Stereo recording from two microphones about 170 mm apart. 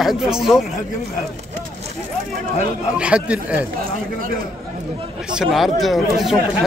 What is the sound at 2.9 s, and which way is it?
Speech, 5° right (ahead or behind).